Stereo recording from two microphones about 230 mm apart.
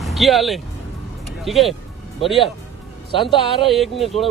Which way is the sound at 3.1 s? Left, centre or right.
Left.